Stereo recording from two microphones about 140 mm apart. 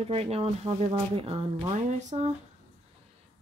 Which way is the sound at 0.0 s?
45° right (ahead or behind).